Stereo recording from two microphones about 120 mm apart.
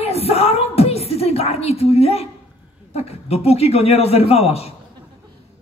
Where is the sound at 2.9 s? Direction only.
60° left (ahead or behind).